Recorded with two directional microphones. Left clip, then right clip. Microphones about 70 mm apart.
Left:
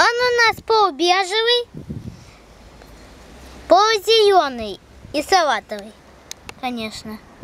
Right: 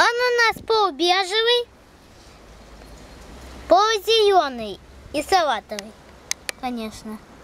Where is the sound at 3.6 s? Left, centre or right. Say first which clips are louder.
Left 3 dB; left.